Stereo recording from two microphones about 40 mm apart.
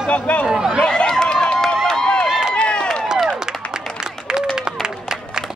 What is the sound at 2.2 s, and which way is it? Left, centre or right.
Run, centre.